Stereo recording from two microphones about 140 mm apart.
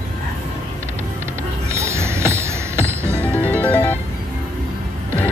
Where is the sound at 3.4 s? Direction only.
10° left (ahead or behind).